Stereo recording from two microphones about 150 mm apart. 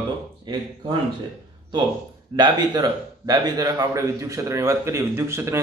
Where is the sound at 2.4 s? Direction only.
25° right (ahead or behind).